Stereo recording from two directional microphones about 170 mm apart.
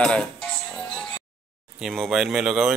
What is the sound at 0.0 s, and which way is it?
Music, 5° left (ahead or behind).